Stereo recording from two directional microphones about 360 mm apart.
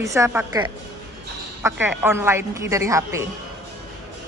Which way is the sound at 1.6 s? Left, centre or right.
Centre.